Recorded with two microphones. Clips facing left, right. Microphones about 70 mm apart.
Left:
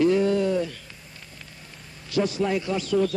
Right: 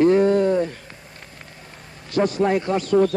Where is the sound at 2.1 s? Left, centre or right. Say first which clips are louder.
Right 5 dB; right.